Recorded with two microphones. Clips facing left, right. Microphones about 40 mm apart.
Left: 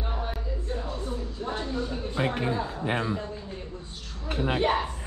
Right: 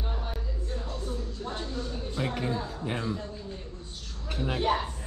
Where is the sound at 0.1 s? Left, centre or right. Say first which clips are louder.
Left 4 dB; centre.